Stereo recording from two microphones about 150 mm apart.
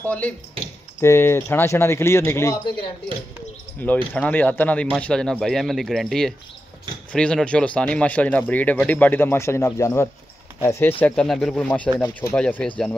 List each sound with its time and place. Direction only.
0.0 s speech: 10° left (ahead or behind)
3.8 s speech: 10° left (ahead or behind)